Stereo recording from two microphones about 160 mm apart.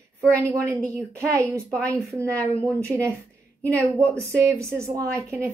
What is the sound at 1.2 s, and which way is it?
A woman's voice, 20° right (ahead or behind).